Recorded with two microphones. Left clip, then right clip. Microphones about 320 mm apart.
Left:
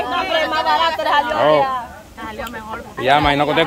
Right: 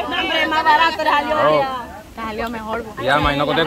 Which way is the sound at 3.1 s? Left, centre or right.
Centre.